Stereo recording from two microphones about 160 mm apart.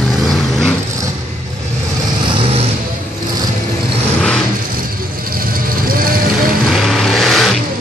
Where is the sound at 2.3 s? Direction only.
35° right (ahead or behind).